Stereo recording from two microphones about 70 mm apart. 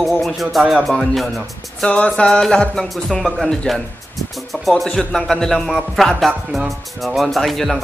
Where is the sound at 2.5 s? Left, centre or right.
Centre.